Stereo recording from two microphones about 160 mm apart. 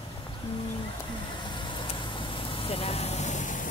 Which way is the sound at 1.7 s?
30° left (ahead or behind).